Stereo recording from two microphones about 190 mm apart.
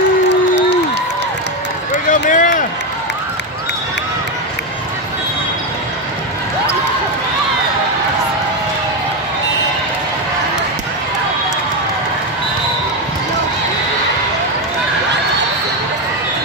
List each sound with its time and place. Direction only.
2.0 s run: 45° left (ahead or behind)